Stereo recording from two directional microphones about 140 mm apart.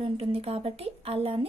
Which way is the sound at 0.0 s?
40° right (ahead or behind).